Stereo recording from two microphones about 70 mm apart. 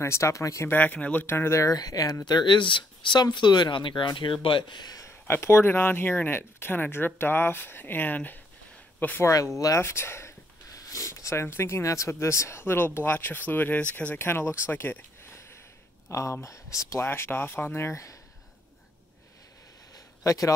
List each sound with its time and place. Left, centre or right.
0.0 s speech: left
0.7 s speech: left
1.2 s speech: left
1.8 s speech: left
3.1 s speech: left
5.0 s speech: left
9.2 s speech: left
9.8 s a sound: left
11.4 s speech: left
14.1 s speech: left
15.3 s a sound: left
16.1 s speech: left
17.0 s speech: left
19.9 s a sound: left